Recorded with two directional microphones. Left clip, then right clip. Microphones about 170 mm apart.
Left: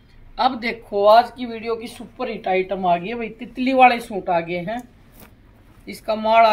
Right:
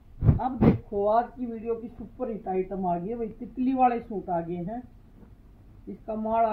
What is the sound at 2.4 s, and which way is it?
Speech, 30° left (ahead or behind).